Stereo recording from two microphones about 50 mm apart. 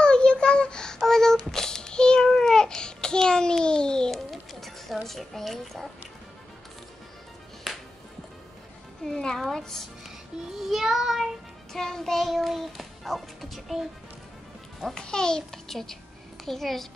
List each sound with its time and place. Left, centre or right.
0.0 s child singing: centre
2.2 s babbling: centre
4.1 s a sound: centre
5.0 s a child's voice: centre
9.0 s a child's voice: centre
10.7 s child singing: centre
11.7 s a child's voice: centre
15.0 s a child's voice: centre